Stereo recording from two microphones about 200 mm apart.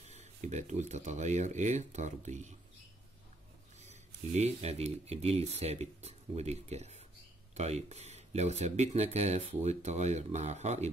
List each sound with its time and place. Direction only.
0.0 s speech: 35° right (ahead or behind)
3.8 s speech: 35° right (ahead or behind)